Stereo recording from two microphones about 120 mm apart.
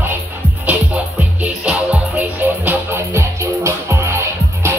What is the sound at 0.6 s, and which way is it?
Music, 10° right (ahead or behind).